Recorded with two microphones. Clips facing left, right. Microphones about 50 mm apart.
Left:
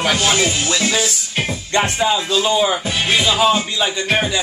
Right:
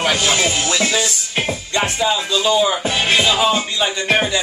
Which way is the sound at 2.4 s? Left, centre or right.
Centre.